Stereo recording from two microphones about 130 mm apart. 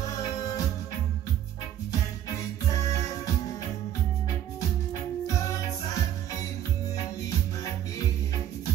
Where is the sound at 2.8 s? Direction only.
25° left (ahead or behind).